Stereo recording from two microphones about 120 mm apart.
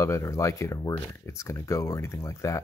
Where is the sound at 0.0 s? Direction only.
25° left (ahead or behind).